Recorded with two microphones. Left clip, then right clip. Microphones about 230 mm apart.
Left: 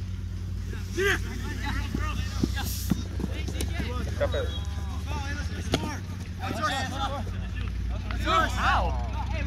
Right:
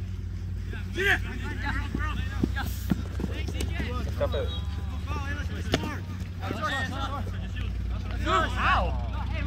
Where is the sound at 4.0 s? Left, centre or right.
Right.